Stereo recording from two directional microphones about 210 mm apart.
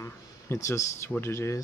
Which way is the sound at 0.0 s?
15° left (ahead or behind).